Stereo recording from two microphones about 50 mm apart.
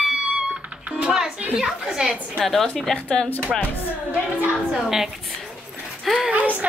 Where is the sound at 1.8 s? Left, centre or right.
Centre.